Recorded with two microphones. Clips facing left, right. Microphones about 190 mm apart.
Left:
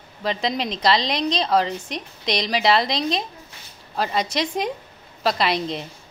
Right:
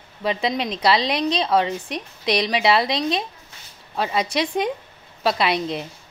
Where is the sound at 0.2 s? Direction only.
5° right (ahead or behind).